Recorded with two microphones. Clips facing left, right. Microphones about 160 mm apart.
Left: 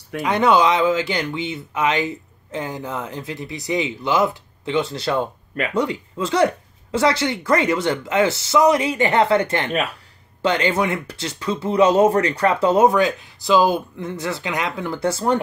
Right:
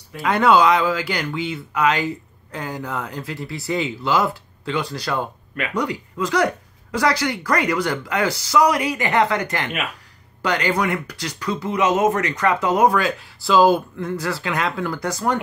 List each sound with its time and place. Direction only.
0.2 s speech: 20° left (ahead or behind)